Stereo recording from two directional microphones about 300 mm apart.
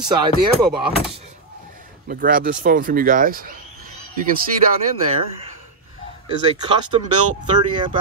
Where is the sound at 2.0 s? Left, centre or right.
Right.